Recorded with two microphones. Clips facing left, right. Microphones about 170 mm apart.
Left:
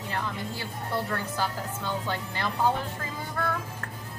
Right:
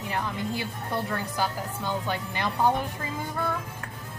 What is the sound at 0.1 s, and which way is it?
A woman's voice, 15° right (ahead or behind).